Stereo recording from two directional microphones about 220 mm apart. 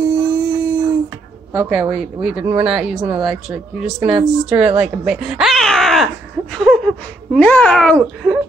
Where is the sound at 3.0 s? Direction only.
20° right (ahead or behind).